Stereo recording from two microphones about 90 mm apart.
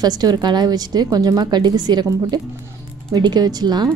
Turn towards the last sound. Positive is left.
turn(degrees=-50)  # may be behind; listen again after turning